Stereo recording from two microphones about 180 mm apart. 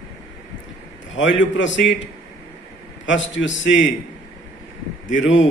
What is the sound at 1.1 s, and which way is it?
A man's voice, 90° left.